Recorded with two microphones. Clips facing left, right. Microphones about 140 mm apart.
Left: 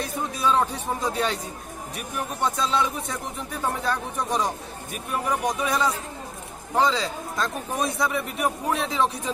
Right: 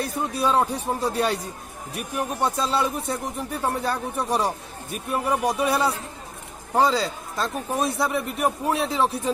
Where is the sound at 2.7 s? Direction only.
40° right (ahead or behind).